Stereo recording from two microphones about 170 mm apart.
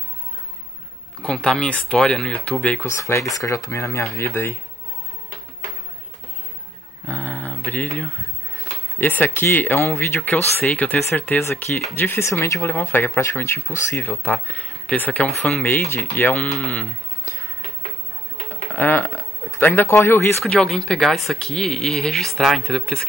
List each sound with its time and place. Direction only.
1.2 s speech: 5° left (ahead or behind)
7.1 s a sound: 10° left (ahead or behind)
8.5 s speech: 10° left (ahead or behind)
15.9 s speech: 15° left (ahead or behind)
16.7 s music: 15° left (ahead or behind)
18.5 s speech: 10° left (ahead or behind)
20.4 s speech: 5° left (ahead or behind)